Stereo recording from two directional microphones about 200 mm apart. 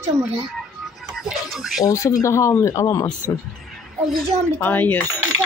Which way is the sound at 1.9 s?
15° left (ahead or behind).